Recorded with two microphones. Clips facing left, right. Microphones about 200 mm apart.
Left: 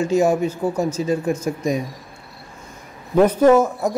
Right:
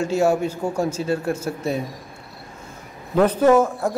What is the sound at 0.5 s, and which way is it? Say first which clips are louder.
Speech: left 2 dB; 10° right (ahead or behind).